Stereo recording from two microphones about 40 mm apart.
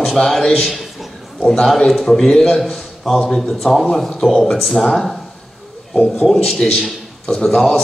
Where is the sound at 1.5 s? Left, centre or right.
Centre.